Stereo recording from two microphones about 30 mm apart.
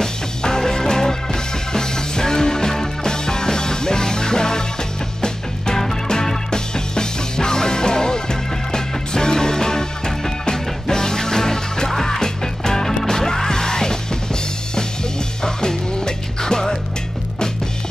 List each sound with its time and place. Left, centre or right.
0.0 s music: centre
6.0 s music: left
15.4 s music: left